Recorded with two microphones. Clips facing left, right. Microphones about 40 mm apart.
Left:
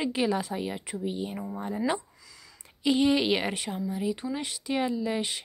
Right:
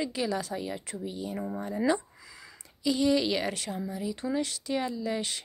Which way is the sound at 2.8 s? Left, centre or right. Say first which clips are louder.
Left 2 dB; left.